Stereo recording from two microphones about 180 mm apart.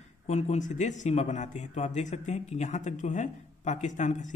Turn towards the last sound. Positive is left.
turn(degrees=45)  # may be behind; listen again after turning